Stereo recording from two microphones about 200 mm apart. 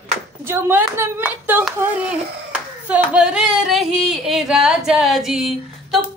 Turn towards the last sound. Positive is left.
turn(degrees=0)  # may be behind; listen again after turning